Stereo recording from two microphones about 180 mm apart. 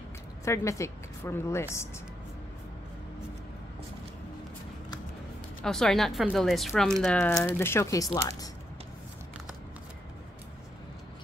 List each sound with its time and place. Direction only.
0.5 s a woman's voice: 15° left (ahead or behind)
5.6 s speech: centre (ahead or behind); by 8.5 s 20° left (ahead or behind)